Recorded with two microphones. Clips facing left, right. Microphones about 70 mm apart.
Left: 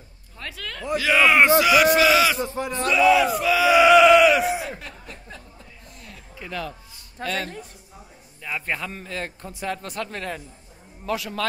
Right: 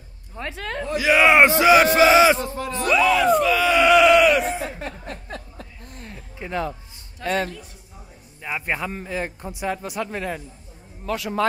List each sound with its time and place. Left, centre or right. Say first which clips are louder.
0.4 s speech: right 6 dB; right
0.9 s speech: right 2 dB; centre
2.4 s speech: even; left
3.1 s a sound: even; centre
4.6 s chuckle: right 3 dB; right
5.0 s a sound: right 6 dB; right
5.9 s a sound: right 5 dB; right
7.2 s speech: right 5 dB; right
8.4 s a man's voice: right 2 dB; centre